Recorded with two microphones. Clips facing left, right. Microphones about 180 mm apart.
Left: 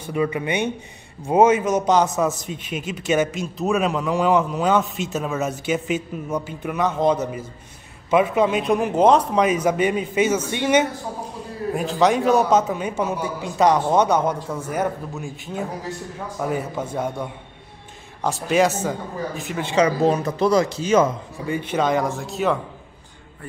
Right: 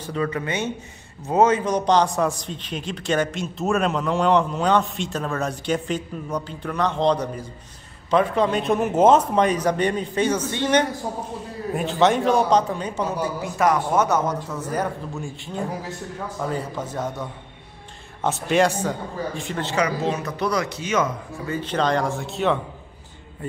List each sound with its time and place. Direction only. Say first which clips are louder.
0.0 s a man's voice: left 3 dB; 15° left (ahead or behind)
13.4 s a man's voice: left 4 dB; 20° left (ahead or behind)
16.3 s a man's voice: left 3 dB; 10° left (ahead or behind)
18.2 s a man's voice: left 1 dB; centre (ahead or behind)
20.0 s speech: left 6 dB; 35° left (ahead or behind)
21.5 s speech: left 1 dB; 10° left (ahead or behind)